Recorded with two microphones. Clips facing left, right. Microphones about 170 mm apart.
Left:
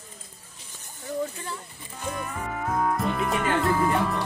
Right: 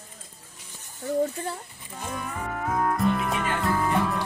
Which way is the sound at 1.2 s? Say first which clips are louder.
Right 4 dB; 40° right (ahead or behind).